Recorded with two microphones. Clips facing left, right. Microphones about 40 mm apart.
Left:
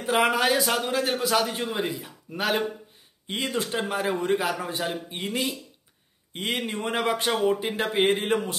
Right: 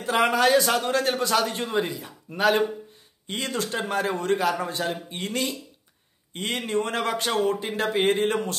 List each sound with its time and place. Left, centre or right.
0.0 s a man's voice: centre
3.3 s speech: centre